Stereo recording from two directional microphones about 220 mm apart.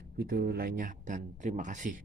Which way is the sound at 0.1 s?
45° right (ahead or behind).